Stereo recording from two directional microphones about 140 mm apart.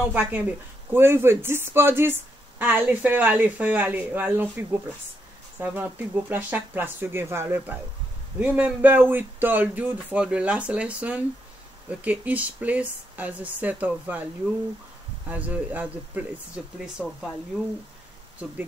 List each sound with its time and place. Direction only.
0.1 s speech: 10° right (ahead or behind)